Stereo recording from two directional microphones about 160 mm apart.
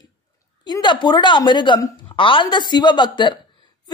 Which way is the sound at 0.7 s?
30° left (ahead or behind).